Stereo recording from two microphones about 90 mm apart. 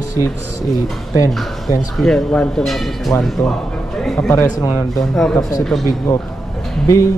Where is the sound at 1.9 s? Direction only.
5° left (ahead or behind).